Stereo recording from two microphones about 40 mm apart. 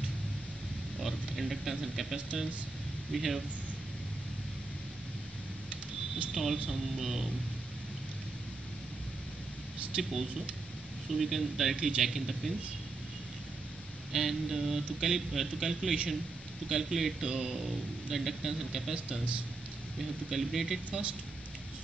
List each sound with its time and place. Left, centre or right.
1.0 s a man's voice: centre
6.3 s a man's voice: centre
9.9 s speech: right
11.1 s a man's voice: centre
14.1 s a man's voice: centre
20.0 s a man's voice: centre